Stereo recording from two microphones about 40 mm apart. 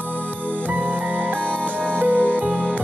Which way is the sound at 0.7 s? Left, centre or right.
Right.